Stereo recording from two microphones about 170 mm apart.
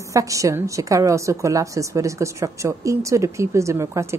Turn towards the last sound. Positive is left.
turn(degrees=-15)  # may be behind; listen again after turning